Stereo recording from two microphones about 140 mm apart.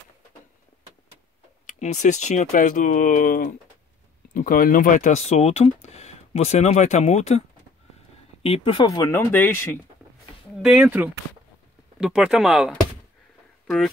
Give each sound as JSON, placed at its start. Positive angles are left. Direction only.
{"t": 1.7, "sound": "speech", "side_deg": 55}
{"t": 5.4, "sound": "speech", "side_deg": 50}
{"t": 8.8, "sound": "speech", "side_deg": 25}
{"t": 9.3, "sound": "speech", "side_deg": 15}
{"t": 10.6, "sound": "speech", "side_deg": -5}
{"t": 12.0, "sound": "speech", "side_deg": -5}